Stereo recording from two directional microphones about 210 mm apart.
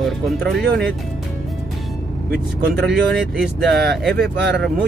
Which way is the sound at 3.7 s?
50° right (ahead or behind).